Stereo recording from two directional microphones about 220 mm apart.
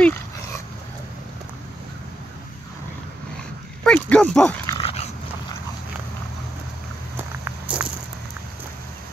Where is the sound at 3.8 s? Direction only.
5° left (ahead or behind).